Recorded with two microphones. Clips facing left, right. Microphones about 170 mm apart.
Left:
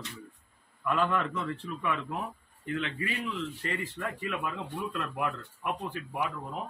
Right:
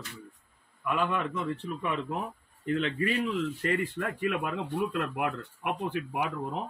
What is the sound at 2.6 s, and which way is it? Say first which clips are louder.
Speech: right 5 dB; 45° right (ahead or behind).